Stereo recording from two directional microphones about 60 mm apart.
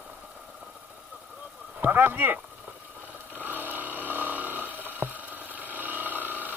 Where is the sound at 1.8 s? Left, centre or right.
Right.